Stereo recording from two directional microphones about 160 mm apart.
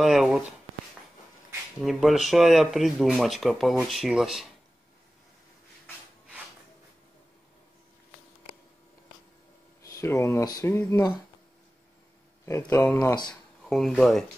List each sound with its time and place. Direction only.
0.0 s speech: 5° right (ahead or behind)
1.8 s speech: centre (ahead or behind)
9.8 s speech: 20° left (ahead or behind)
12.4 s speech: 15° left (ahead or behind)
13.3 s speech: centre (ahead or behind)